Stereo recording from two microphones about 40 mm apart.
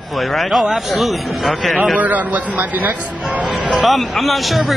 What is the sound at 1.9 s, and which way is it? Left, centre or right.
A man's voice, right.